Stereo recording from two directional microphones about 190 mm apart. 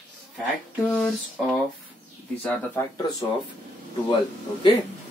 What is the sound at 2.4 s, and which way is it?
Speech, 10° left (ahead or behind).